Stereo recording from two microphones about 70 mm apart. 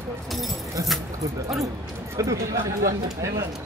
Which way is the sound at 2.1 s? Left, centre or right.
Right.